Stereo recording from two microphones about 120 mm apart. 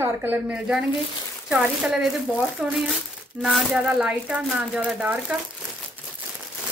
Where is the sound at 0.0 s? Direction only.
15° right (ahead or behind).